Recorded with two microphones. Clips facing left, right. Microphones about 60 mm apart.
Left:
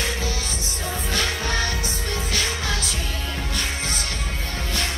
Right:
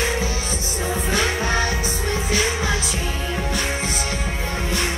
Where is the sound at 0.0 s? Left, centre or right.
Centre.